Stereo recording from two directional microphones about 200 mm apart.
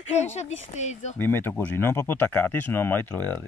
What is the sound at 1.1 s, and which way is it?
Speech, 10° left (ahead or behind).